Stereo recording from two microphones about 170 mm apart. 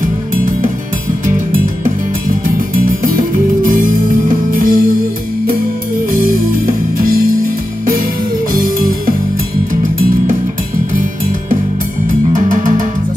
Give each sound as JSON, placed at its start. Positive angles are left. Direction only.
{"t": 1.2, "sound": "music", "side_deg": -50}
{"t": 12.3, "sound": "music", "side_deg": -50}